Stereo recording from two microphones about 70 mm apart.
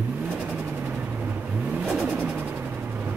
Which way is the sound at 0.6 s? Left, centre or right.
Right.